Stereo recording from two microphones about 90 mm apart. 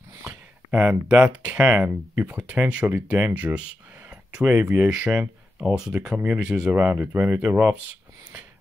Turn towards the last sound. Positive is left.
turn(degrees=-15)  # may be behind; listen again after turning